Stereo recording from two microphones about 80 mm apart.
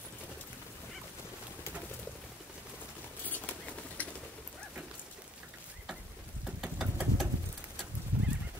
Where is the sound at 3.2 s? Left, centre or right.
Left.